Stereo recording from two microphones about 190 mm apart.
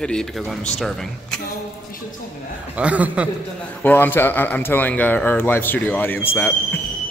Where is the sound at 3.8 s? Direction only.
10° left (ahead or behind).